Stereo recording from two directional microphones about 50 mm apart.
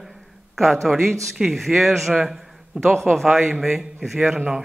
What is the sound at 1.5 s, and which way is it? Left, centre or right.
Speech, centre.